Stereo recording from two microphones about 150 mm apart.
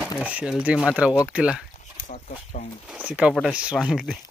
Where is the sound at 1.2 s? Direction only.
5° right (ahead or behind).